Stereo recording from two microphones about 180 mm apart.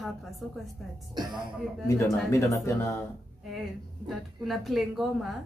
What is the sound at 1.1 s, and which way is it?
Speech, 25° right (ahead or behind).